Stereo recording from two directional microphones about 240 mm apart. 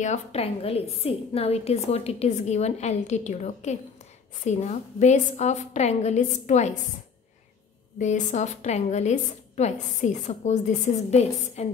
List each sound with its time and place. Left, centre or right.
0.0 s a woman's voice: left
8.0 s a woman's voice: left